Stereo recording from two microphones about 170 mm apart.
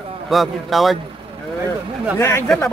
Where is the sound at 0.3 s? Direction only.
Centre (ahead or behind).